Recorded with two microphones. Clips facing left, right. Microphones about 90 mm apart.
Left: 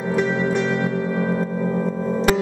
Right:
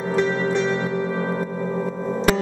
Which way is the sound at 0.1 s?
5° left (ahead or behind).